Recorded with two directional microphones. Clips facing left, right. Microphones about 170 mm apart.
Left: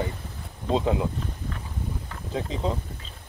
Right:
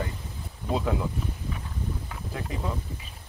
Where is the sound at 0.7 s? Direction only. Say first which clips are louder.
Left 4 dB; 20° left (ahead or behind).